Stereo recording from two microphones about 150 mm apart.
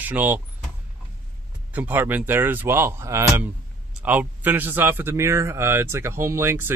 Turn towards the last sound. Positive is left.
turn(degrees=-15)  # may be behind; listen again after turning